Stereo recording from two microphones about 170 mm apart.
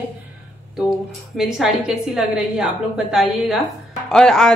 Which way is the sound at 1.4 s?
5° right (ahead or behind).